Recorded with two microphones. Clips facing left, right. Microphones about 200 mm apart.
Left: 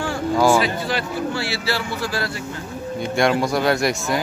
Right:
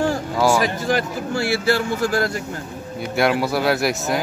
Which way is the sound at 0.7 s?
45° right (ahead or behind).